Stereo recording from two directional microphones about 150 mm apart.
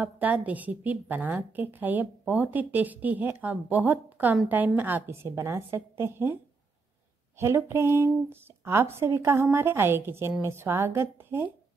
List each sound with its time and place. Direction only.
0.0 s a woman's voice: 10° right (ahead or behind)
7.3 s a woman's voice: 20° right (ahead or behind)